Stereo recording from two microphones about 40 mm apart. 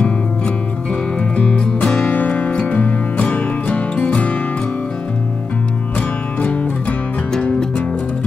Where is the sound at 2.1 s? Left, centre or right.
Left.